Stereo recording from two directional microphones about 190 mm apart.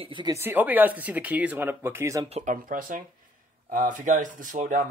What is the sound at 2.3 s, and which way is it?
Speech, 45° right (ahead or behind).